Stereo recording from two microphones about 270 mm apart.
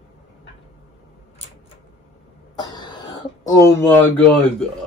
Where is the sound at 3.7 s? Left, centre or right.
Centre.